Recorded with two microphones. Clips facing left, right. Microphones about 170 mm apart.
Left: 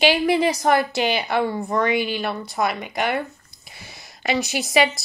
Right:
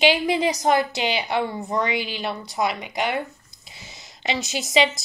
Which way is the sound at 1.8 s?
55° left (ahead or behind).